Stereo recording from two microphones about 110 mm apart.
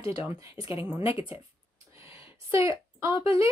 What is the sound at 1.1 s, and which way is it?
Speech, 60° left (ahead or behind).